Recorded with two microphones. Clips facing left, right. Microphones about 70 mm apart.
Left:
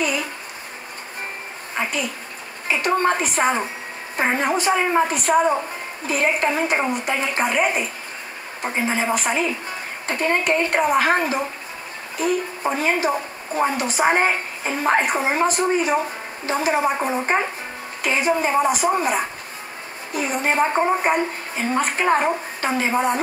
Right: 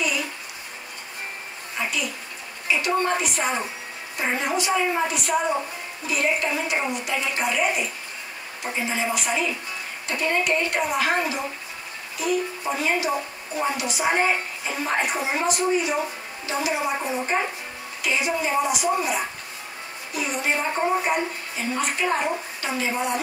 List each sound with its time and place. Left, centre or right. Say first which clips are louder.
1.8 s a woman's voice: left 3 dB; left